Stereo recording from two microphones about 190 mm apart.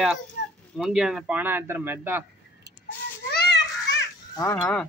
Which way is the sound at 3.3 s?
60° left (ahead or behind).